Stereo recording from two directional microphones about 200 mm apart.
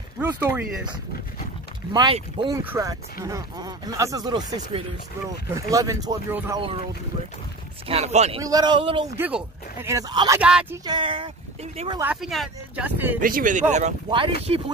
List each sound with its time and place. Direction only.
0.2 s speech: 10° right (ahead or behind)
2.0 s a man's voice: 25° right (ahead or behind)
2.5 s speech: 10° right (ahead or behind)
7.9 s speech: 35° right (ahead or behind)
8.4 s a man's voice: 20° right (ahead or behind)
9.1 s speech: 10° right (ahead or behind)
10.4 s speech: 5° right (ahead or behind)
10.9 s a man's voice: 25° right (ahead or behind)
12.0 s speech: 5° right (ahead or behind)
13.2 s speech: 45° right (ahead or behind)